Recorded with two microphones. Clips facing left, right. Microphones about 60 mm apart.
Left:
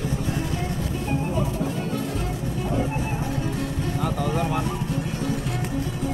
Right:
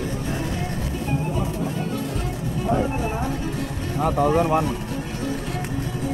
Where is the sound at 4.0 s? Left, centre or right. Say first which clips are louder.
Right 8 dB; right.